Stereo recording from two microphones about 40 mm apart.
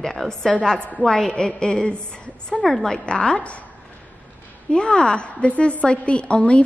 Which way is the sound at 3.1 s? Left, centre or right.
Left.